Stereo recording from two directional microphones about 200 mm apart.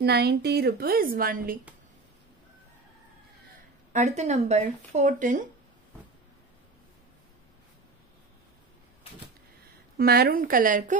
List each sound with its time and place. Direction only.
0.0 s a woman's voice: 55° right (ahead or behind)
3.9 s speech: 35° right (ahead or behind)
9.9 s a woman's voice: 50° right (ahead or behind)